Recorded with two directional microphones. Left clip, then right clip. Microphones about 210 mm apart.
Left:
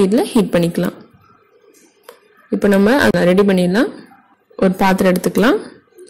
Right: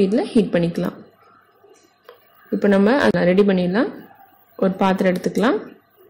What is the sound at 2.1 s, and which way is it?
Speech, 15° left (ahead or behind).